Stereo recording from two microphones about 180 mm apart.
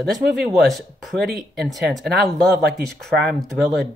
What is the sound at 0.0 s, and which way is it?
Speech, centre (ahead or behind).